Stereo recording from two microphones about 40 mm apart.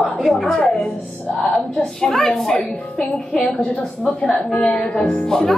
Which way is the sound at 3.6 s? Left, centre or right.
Left.